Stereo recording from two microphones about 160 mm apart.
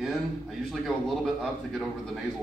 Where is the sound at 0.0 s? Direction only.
Centre (ahead or behind).